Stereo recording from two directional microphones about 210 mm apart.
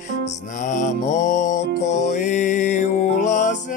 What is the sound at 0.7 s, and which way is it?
Music, 35° left (ahead or behind).